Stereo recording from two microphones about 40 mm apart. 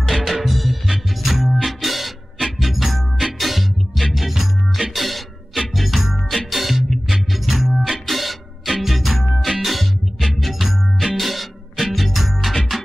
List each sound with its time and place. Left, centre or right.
0.0 s music: centre